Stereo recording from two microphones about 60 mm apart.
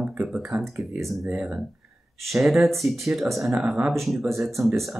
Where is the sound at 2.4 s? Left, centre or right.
Centre.